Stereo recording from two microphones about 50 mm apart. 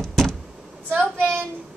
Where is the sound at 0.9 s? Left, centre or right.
Right.